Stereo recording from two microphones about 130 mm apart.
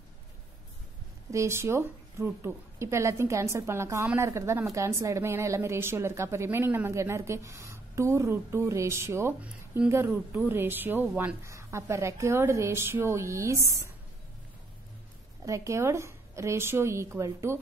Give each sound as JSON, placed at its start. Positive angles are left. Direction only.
{"t": 1.3, "sound": "a woman's voice", "side_deg": -20}
{"t": 15.4, "sound": "a woman's voice", "side_deg": -25}